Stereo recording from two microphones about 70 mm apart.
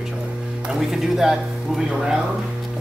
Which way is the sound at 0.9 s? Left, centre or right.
Centre.